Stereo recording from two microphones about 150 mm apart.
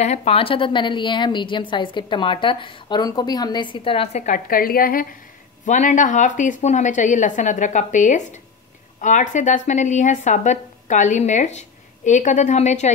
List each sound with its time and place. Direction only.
0.0 s a woman's voice: 50° left (ahead or behind)
4.3 s a woman's voice: 70° left (ahead or behind)
5.7 s a woman's voice: 55° left (ahead or behind)